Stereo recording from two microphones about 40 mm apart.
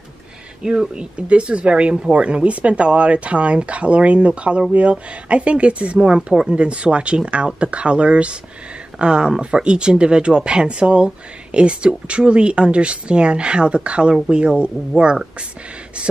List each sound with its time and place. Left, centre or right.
0.6 s speech: right